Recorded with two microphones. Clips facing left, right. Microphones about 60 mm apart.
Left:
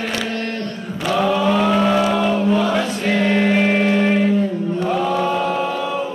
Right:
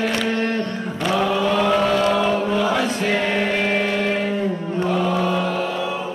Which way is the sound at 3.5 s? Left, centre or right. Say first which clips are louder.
Left 4 dB; centre.